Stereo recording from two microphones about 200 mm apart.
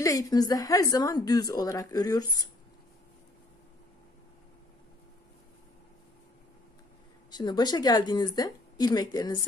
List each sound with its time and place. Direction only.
0.0 s a woman's voice: 15° left (ahead or behind)
7.2 s a woman's voice: 20° left (ahead or behind)